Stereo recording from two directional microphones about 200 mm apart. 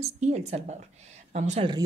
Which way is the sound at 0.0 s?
35° right (ahead or behind).